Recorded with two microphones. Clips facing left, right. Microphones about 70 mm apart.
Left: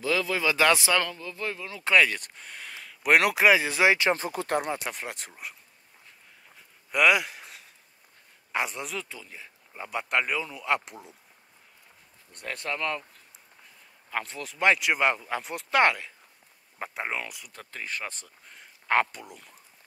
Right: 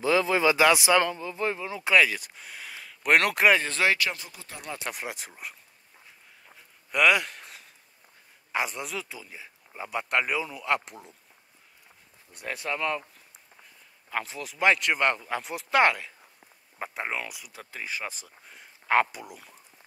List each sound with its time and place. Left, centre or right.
0.0 s a sound: right
0.6 s speech: centre
1.9 s speech: centre
4.1 s speech: left
4.4 s speech: left
4.9 s speech: centre
6.5 s a sound: centre
8.5 s speech: centre
12.3 s speech: centre
14.1 s speech: centre